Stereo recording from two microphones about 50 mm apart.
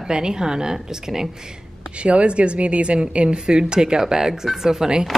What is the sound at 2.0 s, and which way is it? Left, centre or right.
A woman's voice, right.